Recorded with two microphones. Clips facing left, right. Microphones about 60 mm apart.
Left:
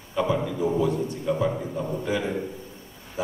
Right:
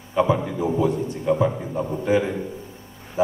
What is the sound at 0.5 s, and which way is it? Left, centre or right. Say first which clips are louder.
A man's voice: right 2 dB; right.